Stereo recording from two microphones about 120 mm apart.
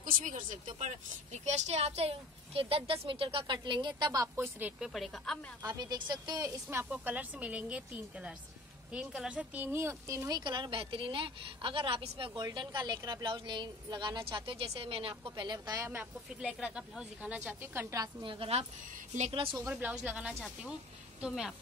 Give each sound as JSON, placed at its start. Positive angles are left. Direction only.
{"t": 0.2, "sound": "a woman's voice", "side_deg": -90}
{"t": 4.6, "sound": "speech", "side_deg": -10}
{"t": 5.7, "sound": "a woman's voice", "side_deg": -35}
{"t": 16.3, "sound": "a woman's voice", "side_deg": -5}
{"t": 18.0, "sound": "a woman's voice", "side_deg": -45}
{"t": 19.7, "sound": "a woman's voice", "side_deg": -10}